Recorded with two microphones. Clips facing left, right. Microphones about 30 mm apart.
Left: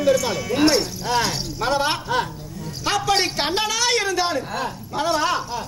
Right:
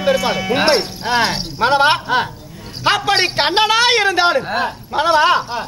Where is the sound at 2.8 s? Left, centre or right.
Right.